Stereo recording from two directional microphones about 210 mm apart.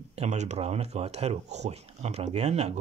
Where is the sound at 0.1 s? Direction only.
30° right (ahead or behind).